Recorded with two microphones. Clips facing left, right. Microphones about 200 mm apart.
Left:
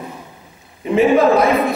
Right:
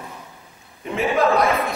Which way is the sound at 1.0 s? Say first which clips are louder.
Left 6 dB; centre (ahead or behind).